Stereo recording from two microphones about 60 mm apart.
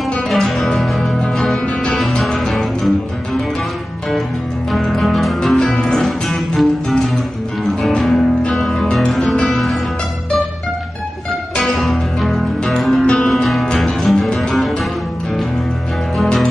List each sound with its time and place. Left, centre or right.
0.3 s music: centre
4.7 s music: centre
11.5 s music: centre